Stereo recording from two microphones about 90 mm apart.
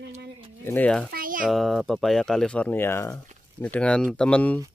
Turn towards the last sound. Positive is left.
turn(degrees=15)  # may be behind; listen again after turning